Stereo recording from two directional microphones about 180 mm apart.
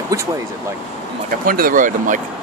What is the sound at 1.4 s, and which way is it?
Speech, 50° right (ahead or behind).